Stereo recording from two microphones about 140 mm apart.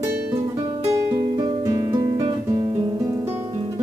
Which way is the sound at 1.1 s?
40° right (ahead or behind).